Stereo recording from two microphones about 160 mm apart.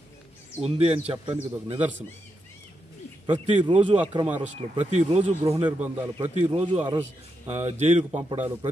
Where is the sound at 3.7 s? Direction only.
35° right (ahead or behind).